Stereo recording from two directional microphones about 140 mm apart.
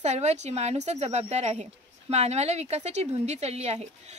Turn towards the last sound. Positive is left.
turn(degrees=-50)  # may be behind; listen again after turning